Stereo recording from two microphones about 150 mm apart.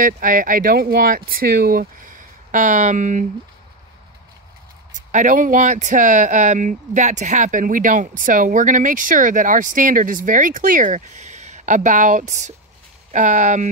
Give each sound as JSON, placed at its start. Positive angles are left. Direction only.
{"t": 0.0, "sound": "speech", "side_deg": -65}
{"t": 5.1, "sound": "speech", "side_deg": -60}